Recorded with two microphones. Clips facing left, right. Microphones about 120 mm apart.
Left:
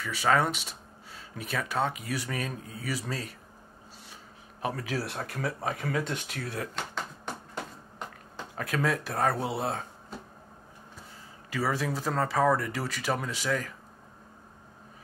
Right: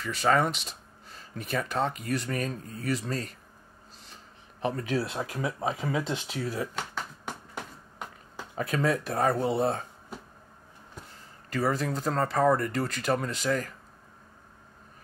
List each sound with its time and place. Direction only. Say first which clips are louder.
0.0 s speech: right 1 dB; centre (ahead or behind)
4.1 s a sound: left 1 dB; 5° left (ahead or behind)
5.4 s speech: right 1 dB; 15° right (ahead or behind)
6.4 s speech: right 3 dB; centre (ahead or behind)
8.5 s speech: right 2 dB; centre (ahead or behind)
11.5 s speech: right 2 dB; 5° left (ahead or behind)